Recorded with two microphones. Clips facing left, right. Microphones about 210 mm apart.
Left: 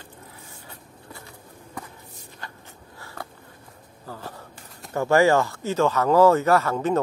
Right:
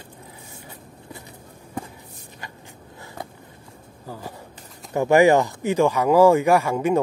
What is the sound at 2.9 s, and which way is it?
Biting, 20° right (ahead or behind).